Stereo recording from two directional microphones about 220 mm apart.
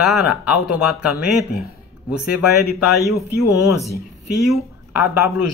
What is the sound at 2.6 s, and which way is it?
Speech, 45° left (ahead or behind).